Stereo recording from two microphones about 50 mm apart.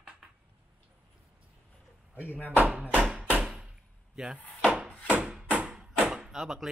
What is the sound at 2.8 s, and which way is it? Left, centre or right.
Speech, right.